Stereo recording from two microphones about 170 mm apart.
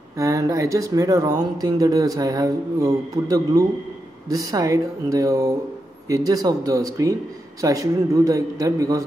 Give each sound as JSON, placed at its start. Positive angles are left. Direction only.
{"t": 0.2, "sound": "speech", "side_deg": -20}